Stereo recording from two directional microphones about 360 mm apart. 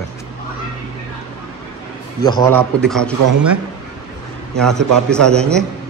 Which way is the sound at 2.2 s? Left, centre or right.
Centre.